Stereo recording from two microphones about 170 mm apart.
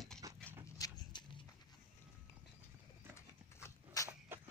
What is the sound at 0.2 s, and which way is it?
Horse, 20° right (ahead or behind).